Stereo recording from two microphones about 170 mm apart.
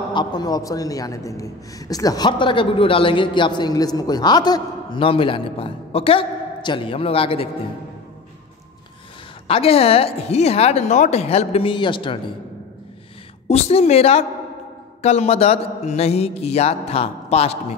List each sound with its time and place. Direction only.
0.1 s a man's voice: 25° left (ahead or behind)
9.5 s speech: 35° left (ahead or behind)
13.5 s speech: 40° left (ahead or behind)